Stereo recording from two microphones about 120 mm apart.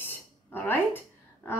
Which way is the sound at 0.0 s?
15° left (ahead or behind).